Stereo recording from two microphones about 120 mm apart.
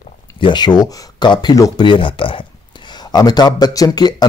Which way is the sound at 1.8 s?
45° left (ahead or behind).